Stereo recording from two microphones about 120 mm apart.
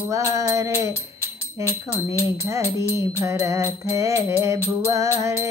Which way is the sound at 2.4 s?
25° right (ahead or behind).